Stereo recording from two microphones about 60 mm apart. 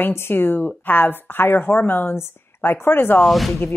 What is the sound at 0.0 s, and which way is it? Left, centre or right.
A woman's voice, left.